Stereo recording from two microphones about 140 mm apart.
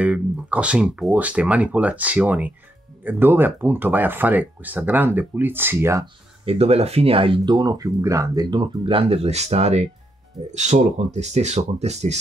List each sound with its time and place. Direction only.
0.0 s speech: 10° right (ahead or behind)
6.4 s speech: 45° right (ahead or behind)